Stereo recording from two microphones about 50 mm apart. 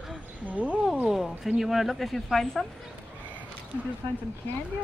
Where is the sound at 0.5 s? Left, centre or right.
Right.